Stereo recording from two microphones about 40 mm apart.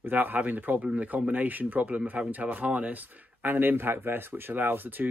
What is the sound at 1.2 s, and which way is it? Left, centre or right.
Speech, right.